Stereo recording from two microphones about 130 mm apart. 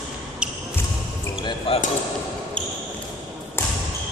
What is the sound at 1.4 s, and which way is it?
Basketball bounce, 45° left (ahead or behind).